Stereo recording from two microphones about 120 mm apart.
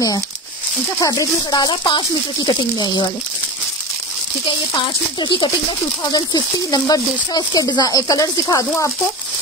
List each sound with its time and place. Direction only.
1.0 s speech: 30° left (ahead or behind)
5.2 s speech: 40° left (ahead or behind)